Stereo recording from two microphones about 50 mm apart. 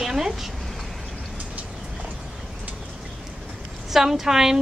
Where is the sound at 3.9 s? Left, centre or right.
Centre.